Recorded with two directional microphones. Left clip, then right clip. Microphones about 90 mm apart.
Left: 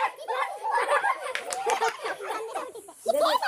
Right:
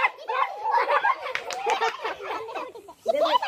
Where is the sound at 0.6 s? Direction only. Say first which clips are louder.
Right 2 dB; 5° left (ahead or behind).